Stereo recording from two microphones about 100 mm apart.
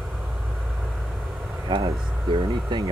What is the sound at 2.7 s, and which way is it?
Speech, 45° right (ahead or behind).